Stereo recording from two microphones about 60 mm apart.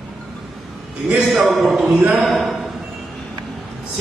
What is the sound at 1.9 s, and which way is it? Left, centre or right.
Speech, right.